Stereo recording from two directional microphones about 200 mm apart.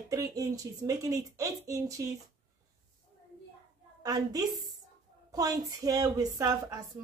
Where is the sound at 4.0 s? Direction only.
20° right (ahead or behind).